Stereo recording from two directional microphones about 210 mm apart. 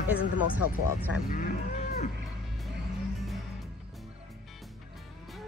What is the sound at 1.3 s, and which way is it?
Vehicle, 40° left (ahead or behind).